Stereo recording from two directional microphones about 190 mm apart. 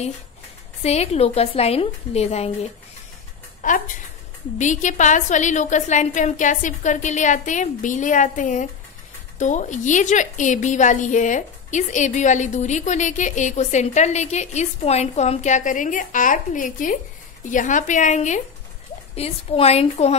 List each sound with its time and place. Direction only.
0.8 s a woman's voice: 35° left (ahead or behind)